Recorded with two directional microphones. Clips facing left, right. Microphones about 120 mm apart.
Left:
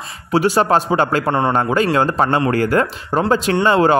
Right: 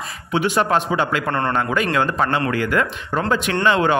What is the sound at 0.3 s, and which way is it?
Speech, 35° left (ahead or behind).